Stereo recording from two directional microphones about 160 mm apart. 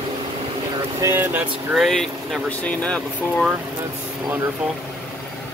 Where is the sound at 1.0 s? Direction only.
15° right (ahead or behind).